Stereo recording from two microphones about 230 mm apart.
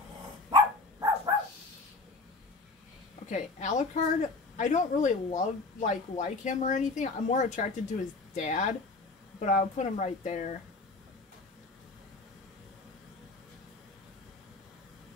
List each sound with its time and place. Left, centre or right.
0.5 s dog: centre
3.3 s a woman's voice: left